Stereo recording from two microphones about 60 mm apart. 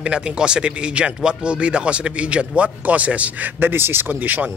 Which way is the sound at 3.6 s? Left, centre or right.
Right.